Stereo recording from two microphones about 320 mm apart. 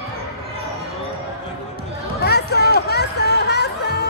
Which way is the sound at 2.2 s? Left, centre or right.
Left.